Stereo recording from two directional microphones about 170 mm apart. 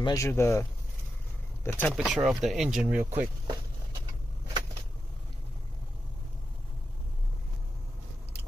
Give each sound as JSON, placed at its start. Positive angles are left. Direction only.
{"t": 0.0, "sound": "speech", "side_deg": 20}
{"t": 2.0, "sound": "speech", "side_deg": -5}